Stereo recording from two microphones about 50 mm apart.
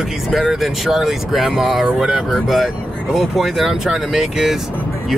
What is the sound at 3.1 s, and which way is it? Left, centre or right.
Speech, centre.